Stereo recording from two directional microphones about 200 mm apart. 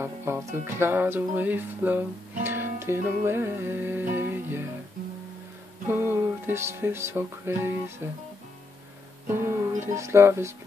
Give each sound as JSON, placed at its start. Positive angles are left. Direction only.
{"t": 0.0, "sound": "music", "side_deg": -10}
{"t": 5.9, "sound": "music", "side_deg": -10}
{"t": 9.3, "sound": "music", "side_deg": -10}